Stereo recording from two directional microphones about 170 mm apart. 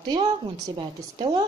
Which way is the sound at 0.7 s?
25° right (ahead or behind).